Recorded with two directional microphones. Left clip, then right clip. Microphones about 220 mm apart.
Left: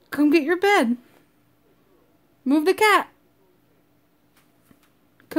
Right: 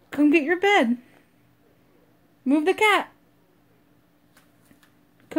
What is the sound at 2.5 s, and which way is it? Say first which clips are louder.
Speech: left 2 dB; 25° left (ahead or behind).